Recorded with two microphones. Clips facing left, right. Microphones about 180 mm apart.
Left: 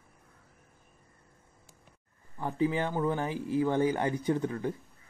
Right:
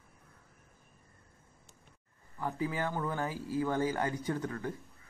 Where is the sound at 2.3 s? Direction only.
25° left (ahead or behind).